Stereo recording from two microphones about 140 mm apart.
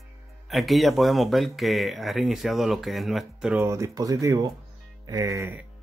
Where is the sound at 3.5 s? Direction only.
20° right (ahead or behind).